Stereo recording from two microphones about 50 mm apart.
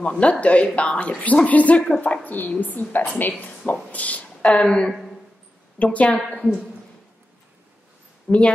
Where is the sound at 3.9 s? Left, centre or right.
Left.